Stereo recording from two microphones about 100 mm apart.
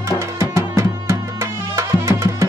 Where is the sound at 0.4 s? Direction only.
30° right (ahead or behind).